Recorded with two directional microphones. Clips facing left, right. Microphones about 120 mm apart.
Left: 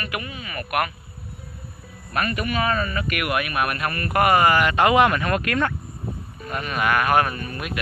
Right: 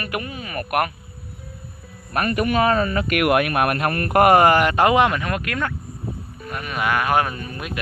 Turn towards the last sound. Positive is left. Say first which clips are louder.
# even
turn(degrees=-20)  # may be behind; listen again after turning